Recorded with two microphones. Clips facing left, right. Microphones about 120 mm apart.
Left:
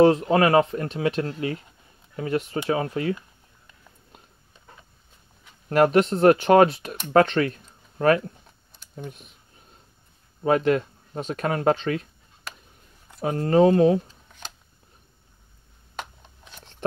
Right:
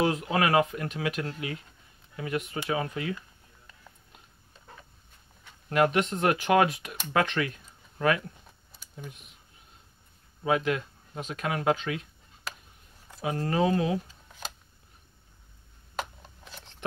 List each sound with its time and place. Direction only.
0.0 s speech: 35° left (ahead or behind)
5.7 s speech: 35° left (ahead or behind)
10.4 s speech: 40° left (ahead or behind)
13.2 s speech: 35° left (ahead or behind)
14.0 s camera: 5° right (ahead or behind)
16.0 s a sound: centre (ahead or behind)